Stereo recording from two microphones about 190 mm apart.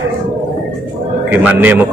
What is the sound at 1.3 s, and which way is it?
Speech, 10° right (ahead or behind).